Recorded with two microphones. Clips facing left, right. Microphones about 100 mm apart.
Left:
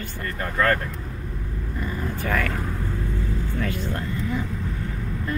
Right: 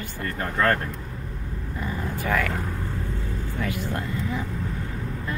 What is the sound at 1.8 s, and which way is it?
Vehicle, 15° right (ahead or behind).